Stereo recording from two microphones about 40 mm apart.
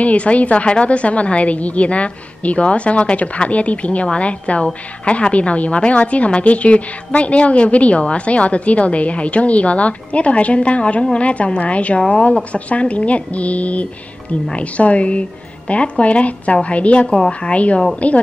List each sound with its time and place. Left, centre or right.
0.0 s a woman's voice: left